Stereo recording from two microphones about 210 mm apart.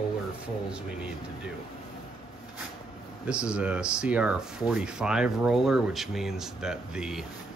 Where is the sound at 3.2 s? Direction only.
5° right (ahead or behind).